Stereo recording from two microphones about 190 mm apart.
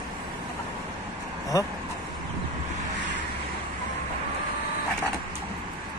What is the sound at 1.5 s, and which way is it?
Speech, 20° left (ahead or behind).